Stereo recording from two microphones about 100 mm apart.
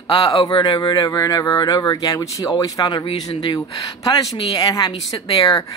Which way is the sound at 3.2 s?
55° left (ahead or behind).